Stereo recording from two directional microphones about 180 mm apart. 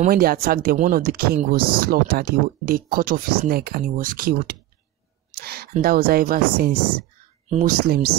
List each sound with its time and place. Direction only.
0.1 s speech: 55° right (ahead or behind)
7.4 s speech: 40° right (ahead or behind)
7.9 s speech: 60° right (ahead or behind)